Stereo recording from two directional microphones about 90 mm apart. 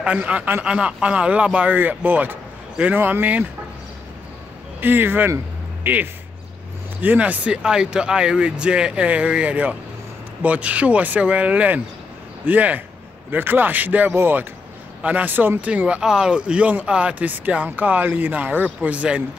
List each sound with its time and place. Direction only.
0.0 s speech: 15° right (ahead or behind)
4.7 s speech: 20° right (ahead or behind)